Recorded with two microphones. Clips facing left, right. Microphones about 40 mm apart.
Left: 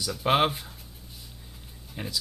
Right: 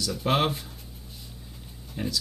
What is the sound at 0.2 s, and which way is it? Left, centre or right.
Speech, centre.